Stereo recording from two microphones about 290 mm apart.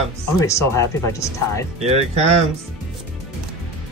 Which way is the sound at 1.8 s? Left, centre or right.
Right.